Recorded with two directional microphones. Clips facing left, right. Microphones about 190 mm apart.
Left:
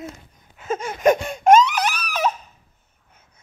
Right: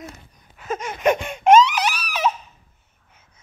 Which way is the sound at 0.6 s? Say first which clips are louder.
Left 2 dB; 30° left (ahead or behind).